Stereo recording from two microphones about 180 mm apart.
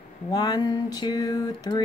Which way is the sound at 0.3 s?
20° left (ahead or behind).